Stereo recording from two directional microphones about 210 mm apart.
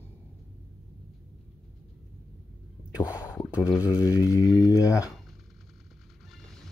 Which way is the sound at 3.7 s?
10° right (ahead or behind).